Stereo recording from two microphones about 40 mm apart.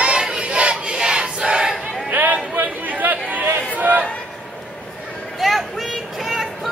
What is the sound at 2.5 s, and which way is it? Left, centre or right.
Chatter, right.